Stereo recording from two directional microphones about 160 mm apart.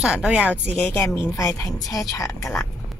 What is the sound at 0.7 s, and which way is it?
Speech, 10° left (ahead or behind).